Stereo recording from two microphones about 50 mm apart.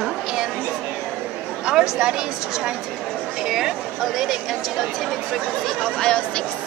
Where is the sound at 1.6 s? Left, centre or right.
Centre.